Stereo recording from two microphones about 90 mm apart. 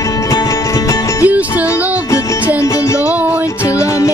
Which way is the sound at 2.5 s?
35° left (ahead or behind).